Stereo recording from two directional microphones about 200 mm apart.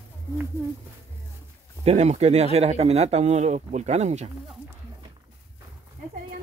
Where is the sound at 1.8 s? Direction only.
35° right (ahead or behind).